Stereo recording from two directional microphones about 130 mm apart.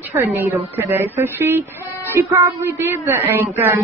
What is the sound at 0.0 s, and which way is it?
Speech, 15° right (ahead or behind).